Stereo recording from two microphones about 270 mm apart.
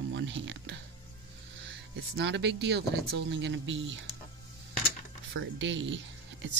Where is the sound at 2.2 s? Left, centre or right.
Right.